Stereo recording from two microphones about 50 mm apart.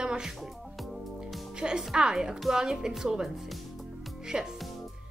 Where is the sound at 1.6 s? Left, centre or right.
Centre.